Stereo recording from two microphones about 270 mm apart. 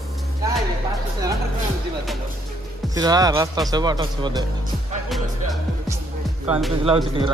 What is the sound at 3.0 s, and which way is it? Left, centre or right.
Speech, centre.